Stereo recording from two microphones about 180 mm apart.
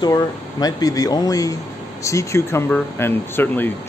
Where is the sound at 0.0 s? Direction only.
20° left (ahead or behind).